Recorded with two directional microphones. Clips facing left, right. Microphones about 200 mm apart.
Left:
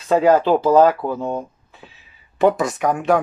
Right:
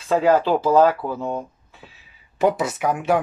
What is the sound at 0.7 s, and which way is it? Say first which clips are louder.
Speech: left 2 dB; 25° left (ahead or behind).